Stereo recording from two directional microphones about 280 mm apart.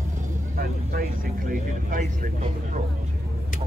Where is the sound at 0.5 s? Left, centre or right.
Right.